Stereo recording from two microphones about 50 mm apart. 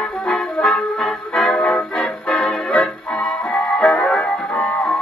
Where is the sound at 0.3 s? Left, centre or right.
Centre.